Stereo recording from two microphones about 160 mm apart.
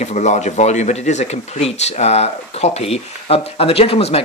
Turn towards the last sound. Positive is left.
turn(degrees=40)  # may be behind; listen again after turning